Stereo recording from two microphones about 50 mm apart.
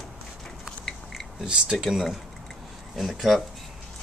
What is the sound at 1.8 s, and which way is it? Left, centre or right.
Speech, centre.